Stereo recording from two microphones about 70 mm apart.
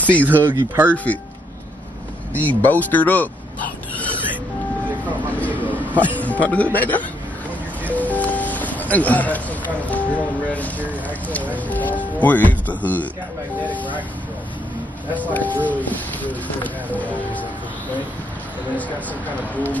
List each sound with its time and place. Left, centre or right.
0.0 s speech: left
0.3 s speech: right
1.1 s speech: left
2.3 s speech: left
5.4 s speech: left
15.1 s speech: left